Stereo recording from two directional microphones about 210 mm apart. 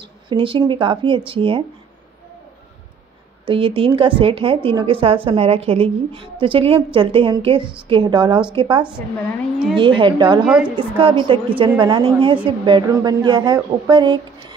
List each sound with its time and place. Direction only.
0.3 s a woman's voice: 25° right (ahead or behind)
3.4 s a woman's voice: 25° right (ahead or behind)
10.4 s a woman's voice: 5° right (ahead or behind)
11.0 s a woman's voice: 25° right (ahead or behind)